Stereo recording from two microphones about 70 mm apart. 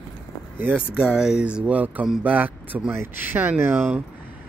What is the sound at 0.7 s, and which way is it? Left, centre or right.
Speech, centre.